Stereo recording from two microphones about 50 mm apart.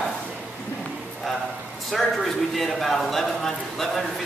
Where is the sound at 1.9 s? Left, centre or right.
Centre.